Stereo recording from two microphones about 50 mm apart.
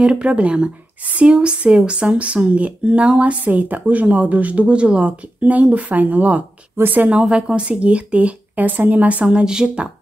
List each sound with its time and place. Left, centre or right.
0.0 s a woman's voice: right
7.1 s speech: centre
9.2 s speech: centre